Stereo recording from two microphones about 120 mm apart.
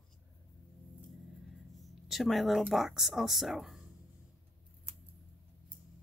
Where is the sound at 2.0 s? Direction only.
Centre (ahead or behind).